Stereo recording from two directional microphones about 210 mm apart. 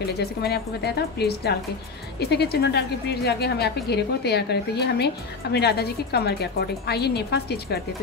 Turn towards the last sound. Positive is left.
turn(degrees=50)  # may be behind; listen again after turning